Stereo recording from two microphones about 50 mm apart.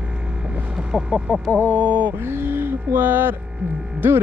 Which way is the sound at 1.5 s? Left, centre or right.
Left.